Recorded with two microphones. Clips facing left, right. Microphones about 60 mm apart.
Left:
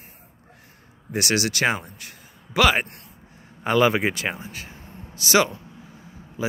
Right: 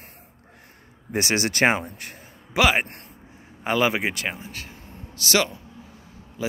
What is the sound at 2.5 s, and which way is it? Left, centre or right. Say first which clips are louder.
Speech: left 1 dB; centre.